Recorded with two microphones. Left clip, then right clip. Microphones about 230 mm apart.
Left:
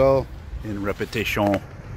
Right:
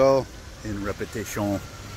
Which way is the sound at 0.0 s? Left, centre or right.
Centre.